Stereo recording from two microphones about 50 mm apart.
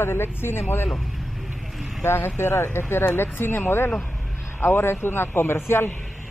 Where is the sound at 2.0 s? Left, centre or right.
Left.